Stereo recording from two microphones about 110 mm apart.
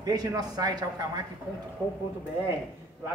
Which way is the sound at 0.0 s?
35° right (ahead or behind).